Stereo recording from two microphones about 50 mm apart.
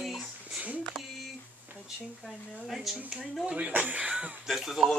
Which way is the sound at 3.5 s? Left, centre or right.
Right.